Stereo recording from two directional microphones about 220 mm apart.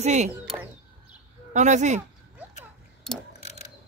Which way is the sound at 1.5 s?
30° right (ahead or behind).